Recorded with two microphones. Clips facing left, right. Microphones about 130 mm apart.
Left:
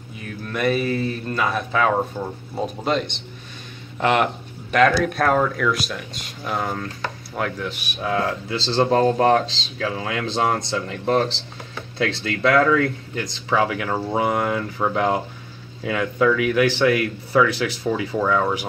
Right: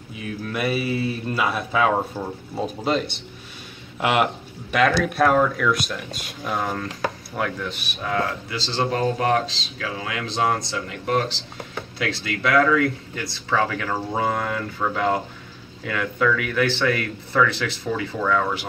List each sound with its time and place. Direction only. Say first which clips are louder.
0.5 s a man's voice: left 3 dB; 5° right (ahead or behind)
7.8 s speech: left 3 dB; 15° left (ahead or behind)
8.5 s speech: left 5 dB; 35° left (ahead or behind)
13.2 s speech: left 2 dB; 15° left (ahead or behind)